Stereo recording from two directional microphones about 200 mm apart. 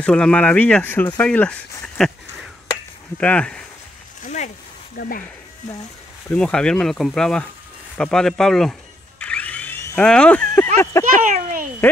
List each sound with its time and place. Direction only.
0.0 s speech: 5° left (ahead or behind)
3.2 s speech: 5° left (ahead or behind)
4.2 s a sound: 35° left (ahead or behind)
4.9 s speech: 45° left (ahead or behind)
6.2 s speech: 5° left (ahead or behind)
9.2 s a sound: 5° left (ahead or behind)
11.3 s a child's voice: 40° right (ahead or behind)